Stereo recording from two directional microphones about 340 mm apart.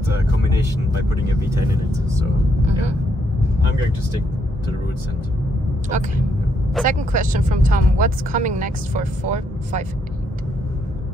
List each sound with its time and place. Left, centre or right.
2.6 s speech: centre
6.8 s speech: right